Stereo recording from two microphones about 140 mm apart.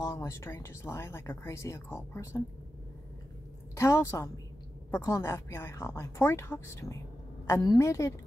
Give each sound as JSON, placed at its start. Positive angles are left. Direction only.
{"t": 0.0, "sound": "speech", "side_deg": 20}
{"t": 3.7, "sound": "speech", "side_deg": 20}